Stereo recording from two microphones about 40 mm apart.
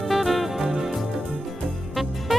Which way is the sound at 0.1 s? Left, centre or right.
Centre.